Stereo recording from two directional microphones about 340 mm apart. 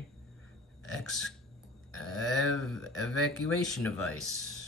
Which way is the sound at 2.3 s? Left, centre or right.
Right.